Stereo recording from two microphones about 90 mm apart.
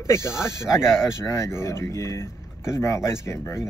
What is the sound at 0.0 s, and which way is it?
Speech, 30° left (ahead or behind).